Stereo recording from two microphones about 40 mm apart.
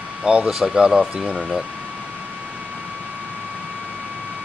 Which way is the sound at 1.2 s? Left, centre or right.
Centre.